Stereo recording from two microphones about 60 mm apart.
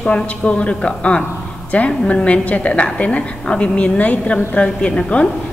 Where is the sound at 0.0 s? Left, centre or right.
Centre.